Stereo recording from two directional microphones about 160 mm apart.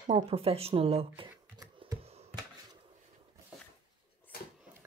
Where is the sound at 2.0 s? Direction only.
40° right (ahead or behind).